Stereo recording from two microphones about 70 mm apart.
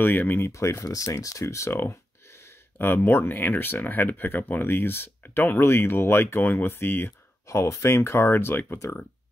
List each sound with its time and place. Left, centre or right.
0.0 s speech: left
0.5 s speech: left